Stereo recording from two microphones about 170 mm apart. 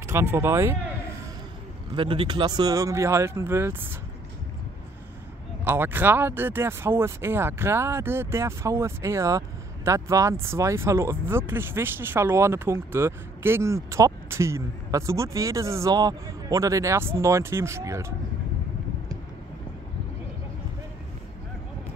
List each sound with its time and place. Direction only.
0.0 s speech: 15° right (ahead or behind)
2.0 s speech: 30° right (ahead or behind); by 3.7 s 15° right (ahead or behind)
5.6 s speech: 10° right (ahead or behind)